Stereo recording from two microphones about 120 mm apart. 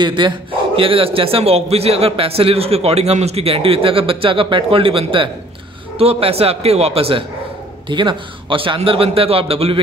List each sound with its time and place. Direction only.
0.0 s a man's voice: 40° right (ahead or behind)
7.9 s a man's voice: 40° right (ahead or behind)